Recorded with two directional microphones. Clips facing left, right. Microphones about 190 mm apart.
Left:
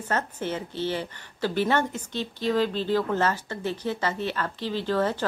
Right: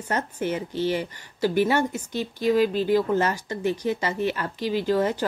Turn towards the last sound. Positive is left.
turn(degrees=-15)  # may be behind; listen again after turning